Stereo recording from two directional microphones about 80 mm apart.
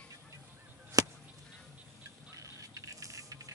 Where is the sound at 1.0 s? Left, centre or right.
Right.